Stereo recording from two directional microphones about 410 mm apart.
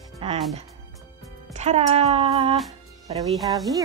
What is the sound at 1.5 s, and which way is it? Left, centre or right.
Speech, centre.